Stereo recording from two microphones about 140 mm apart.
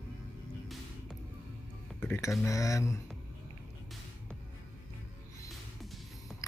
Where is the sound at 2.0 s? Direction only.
15° left (ahead or behind).